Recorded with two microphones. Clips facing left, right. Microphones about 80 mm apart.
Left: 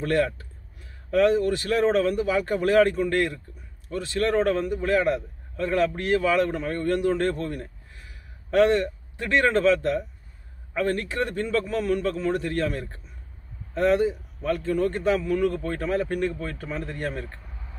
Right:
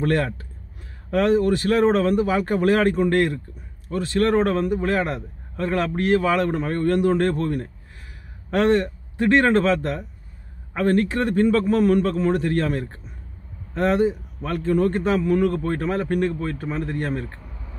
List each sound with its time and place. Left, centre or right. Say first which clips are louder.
0.0 s a man's voice: right 1 dB; right